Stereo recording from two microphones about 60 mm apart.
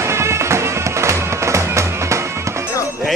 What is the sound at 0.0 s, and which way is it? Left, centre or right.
Music, right.